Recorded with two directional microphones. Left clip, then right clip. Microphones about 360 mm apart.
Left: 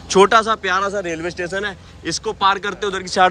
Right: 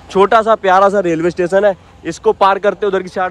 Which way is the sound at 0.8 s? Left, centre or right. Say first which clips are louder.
Right 10 dB; right.